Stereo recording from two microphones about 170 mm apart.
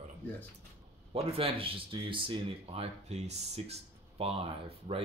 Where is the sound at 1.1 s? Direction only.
35° right (ahead or behind).